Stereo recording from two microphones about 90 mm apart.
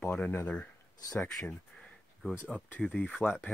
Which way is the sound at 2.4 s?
15° left (ahead or behind).